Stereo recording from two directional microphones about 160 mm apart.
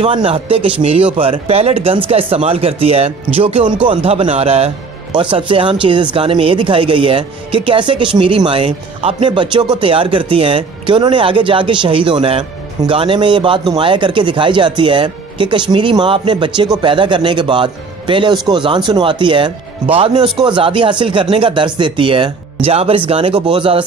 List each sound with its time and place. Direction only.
0.0 s speech: 35° right (ahead or behind)